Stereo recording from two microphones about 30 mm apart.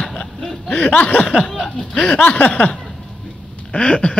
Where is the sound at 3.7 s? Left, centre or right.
Left.